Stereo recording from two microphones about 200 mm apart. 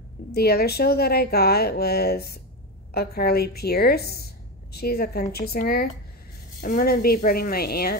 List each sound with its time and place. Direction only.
0.3 s speech: 50° left (ahead or behind)